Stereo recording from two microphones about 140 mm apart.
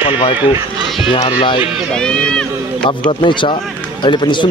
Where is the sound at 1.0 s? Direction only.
35° left (ahead or behind).